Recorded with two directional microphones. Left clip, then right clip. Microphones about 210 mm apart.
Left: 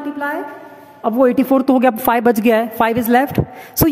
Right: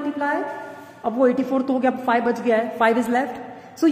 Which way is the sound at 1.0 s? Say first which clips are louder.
Left 5 dB; 50° left (ahead or behind).